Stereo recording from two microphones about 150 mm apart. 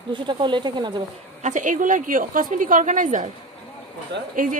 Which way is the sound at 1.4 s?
55° right (ahead or behind).